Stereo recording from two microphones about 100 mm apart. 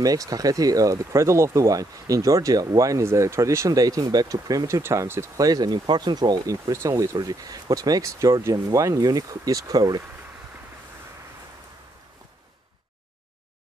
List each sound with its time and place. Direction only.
0.0 s speech: 40° right (ahead or behind)
5.4 s speech: 40° right (ahead or behind)